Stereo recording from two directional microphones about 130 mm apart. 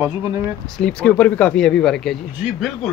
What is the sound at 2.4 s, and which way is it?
Speech, 10° right (ahead or behind).